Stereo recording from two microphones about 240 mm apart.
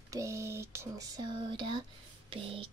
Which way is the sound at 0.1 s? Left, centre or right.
Centre.